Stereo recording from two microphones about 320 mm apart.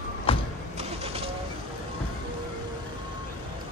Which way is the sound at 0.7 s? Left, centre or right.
Centre.